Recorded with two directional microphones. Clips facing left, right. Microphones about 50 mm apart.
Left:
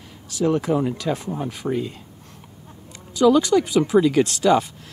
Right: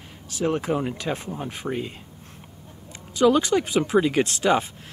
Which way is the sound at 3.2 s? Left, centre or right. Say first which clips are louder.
Left 3 dB; right.